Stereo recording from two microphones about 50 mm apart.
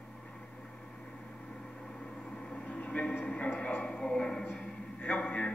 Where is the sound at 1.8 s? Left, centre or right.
Centre.